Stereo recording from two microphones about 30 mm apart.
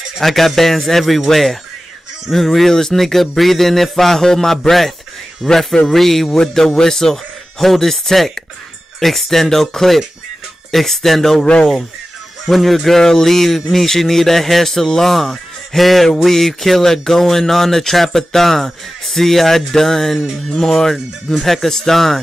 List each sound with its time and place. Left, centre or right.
0.2 s speech: centre
12.4 s speech: centre
20.9 s speech: centre